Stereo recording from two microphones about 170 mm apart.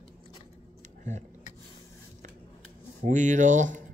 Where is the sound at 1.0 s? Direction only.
45° right (ahead or behind).